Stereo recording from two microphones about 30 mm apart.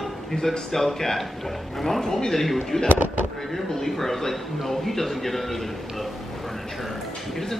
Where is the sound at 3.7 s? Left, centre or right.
Centre.